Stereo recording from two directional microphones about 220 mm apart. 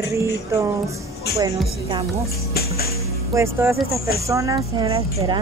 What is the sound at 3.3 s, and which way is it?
Speech, 10° right (ahead or behind).